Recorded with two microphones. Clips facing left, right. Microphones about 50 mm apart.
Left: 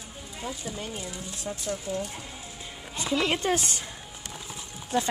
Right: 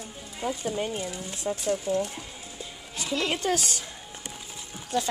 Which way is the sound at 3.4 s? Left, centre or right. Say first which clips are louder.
Even; left.